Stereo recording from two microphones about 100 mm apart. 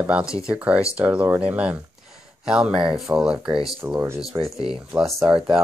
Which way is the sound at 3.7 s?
20° right (ahead or behind).